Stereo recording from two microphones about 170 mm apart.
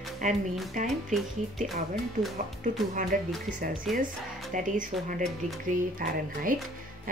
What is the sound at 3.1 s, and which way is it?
Speech, 50° right (ahead or behind).